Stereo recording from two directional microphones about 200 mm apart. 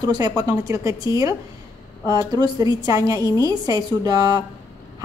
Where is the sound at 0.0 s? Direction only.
20° right (ahead or behind).